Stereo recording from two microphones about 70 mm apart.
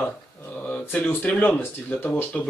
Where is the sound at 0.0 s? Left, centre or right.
Left.